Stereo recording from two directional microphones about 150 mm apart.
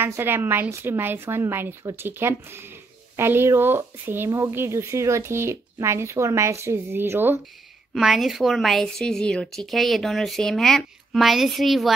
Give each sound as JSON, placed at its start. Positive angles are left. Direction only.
{"t": 0.0, "sound": "a woman's voice", "side_deg": -15}
{"t": 7.9, "sound": "speech", "side_deg": 0}